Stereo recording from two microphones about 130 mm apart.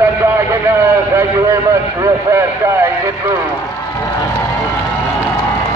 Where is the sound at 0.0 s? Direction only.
20° right (ahead or behind).